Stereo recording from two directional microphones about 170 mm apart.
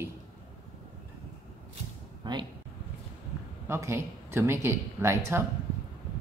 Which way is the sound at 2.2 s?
25° right (ahead or behind).